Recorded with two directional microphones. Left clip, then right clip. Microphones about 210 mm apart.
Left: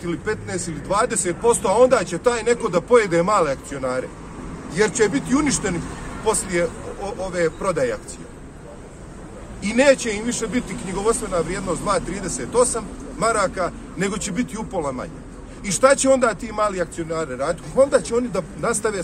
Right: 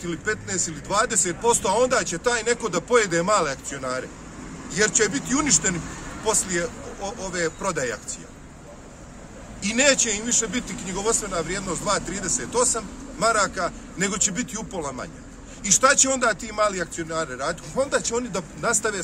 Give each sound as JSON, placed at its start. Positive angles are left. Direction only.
{"t": 0.0, "sound": "speech", "side_deg": -20}
{"t": 9.6, "sound": "speech", "side_deg": -20}